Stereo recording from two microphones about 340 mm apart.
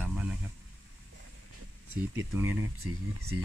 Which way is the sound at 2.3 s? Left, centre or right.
Right.